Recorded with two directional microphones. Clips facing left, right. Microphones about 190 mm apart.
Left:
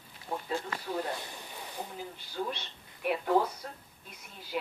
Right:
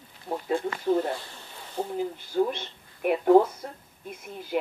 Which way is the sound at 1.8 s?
45° right (ahead or behind).